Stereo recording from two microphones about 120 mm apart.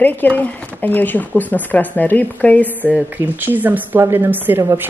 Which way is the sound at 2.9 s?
15° right (ahead or behind).